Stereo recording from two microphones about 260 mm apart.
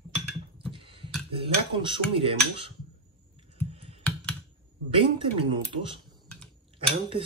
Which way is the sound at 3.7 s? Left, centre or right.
Right.